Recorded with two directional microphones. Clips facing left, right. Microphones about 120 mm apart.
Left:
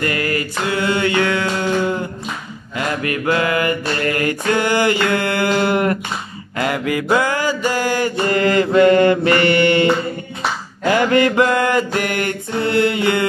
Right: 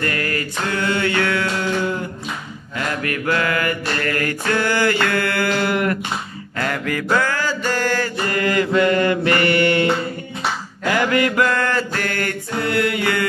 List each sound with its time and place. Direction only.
0.0 s music: 15° left (ahead or behind)
3.0 s mantra: 20° left (ahead or behind)
6.6 s mantra: 10° left (ahead or behind)
8.3 s mantra: 25° left (ahead or behind)
11.0 s mantra: 25° left (ahead or behind)